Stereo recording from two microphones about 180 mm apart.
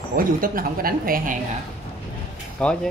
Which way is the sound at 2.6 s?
5° left (ahead or behind).